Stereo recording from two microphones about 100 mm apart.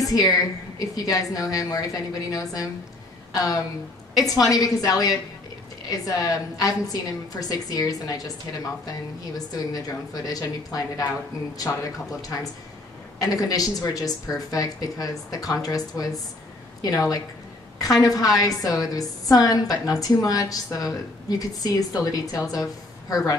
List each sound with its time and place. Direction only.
0.0 s a woman's voice: 35° left (ahead or behind)
9.5 s a woman's voice: 40° left (ahead or behind)